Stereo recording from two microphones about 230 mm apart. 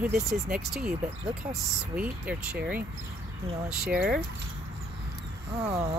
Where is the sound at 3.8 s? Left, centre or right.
Right.